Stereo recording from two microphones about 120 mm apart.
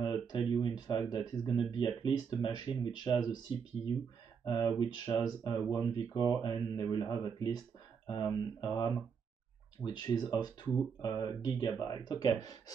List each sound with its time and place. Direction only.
0.0 s speech: 40° left (ahead or behind)